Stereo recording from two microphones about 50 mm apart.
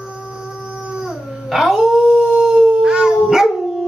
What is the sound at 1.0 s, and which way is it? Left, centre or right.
Howl, centre.